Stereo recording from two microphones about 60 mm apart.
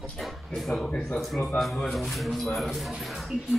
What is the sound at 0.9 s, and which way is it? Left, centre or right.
Speech, centre.